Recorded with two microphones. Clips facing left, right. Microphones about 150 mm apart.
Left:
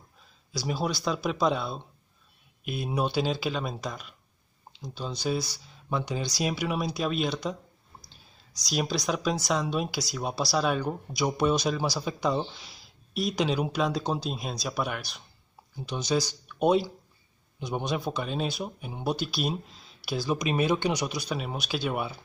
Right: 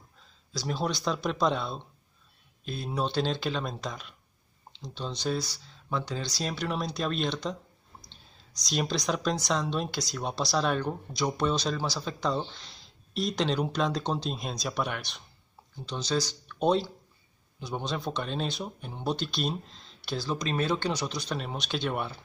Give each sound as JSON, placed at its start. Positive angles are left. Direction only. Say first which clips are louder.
{"t": 0.5, "sound": "speech", "louder": "left 1 dB", "side_deg": 10}